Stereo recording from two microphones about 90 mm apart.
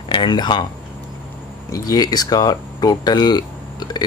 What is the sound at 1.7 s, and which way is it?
Speech, 45° left (ahead or behind).